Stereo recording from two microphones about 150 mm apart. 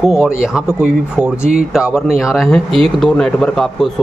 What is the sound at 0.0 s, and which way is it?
Speech, centre (ahead or behind).